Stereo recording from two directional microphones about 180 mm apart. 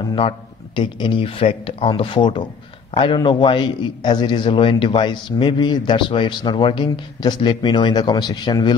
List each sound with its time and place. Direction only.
0.7 s a man's voice: 25° left (ahead or behind)